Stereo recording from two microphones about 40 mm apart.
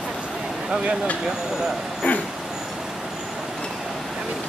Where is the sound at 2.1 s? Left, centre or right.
Left.